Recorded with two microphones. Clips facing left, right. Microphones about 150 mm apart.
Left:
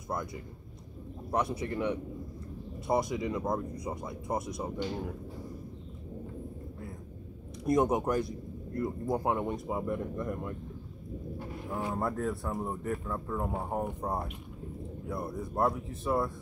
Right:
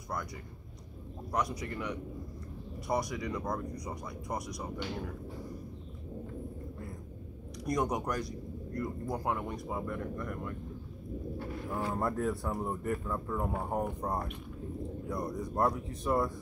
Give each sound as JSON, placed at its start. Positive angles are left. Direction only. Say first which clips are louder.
{"t": 1.3, "sound": "speech", "louder": "left 3 dB", "side_deg": 30}
{"t": 7.6, "sound": "speech", "louder": "left 5 dB", "side_deg": 25}
{"t": 11.9, "sound": "speech", "louder": "even", "side_deg": 0}
{"t": 13.8, "sound": "speech", "louder": "left 1 dB", "side_deg": 15}